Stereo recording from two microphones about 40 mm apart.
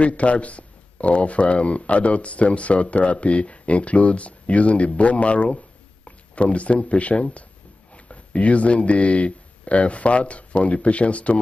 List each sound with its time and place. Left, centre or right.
0.0 s speech: left